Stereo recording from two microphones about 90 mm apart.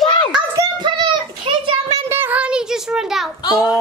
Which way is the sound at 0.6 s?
50° right (ahead or behind).